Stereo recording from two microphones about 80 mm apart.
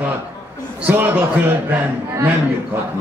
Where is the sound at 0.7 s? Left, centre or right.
Right.